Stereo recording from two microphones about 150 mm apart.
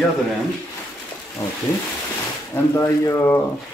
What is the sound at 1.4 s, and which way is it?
Speech, 20° left (ahead or behind).